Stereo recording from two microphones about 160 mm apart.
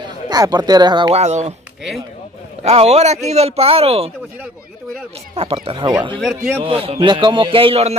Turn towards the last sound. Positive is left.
turn(degrees=-35)  # may be behind; listen again after turning